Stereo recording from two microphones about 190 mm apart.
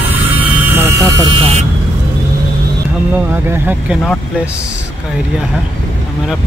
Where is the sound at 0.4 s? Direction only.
10° right (ahead or behind).